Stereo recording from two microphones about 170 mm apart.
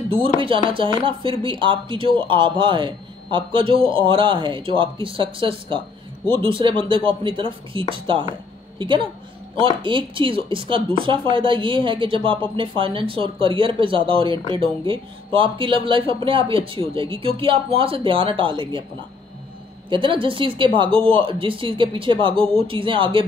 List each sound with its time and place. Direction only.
0.1 s a woman's voice: 30° right (ahead or behind)
19.9 s speech: 30° right (ahead or behind)